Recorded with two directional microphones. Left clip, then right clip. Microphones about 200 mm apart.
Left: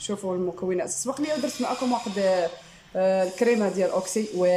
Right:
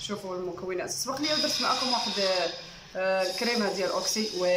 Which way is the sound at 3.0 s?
25° left (ahead or behind).